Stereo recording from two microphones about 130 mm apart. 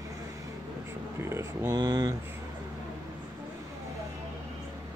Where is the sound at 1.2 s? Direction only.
20° right (ahead or behind).